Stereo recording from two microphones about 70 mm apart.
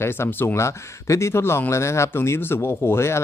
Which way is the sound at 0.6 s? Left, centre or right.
Left.